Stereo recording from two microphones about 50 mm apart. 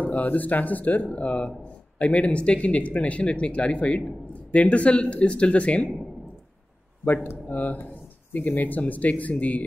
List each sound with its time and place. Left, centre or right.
0.0 s speech: left
7.4 s speech: left